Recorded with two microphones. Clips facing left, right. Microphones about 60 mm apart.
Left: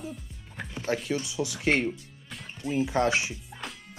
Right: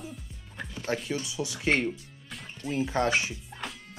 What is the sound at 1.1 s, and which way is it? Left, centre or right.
Speech, left.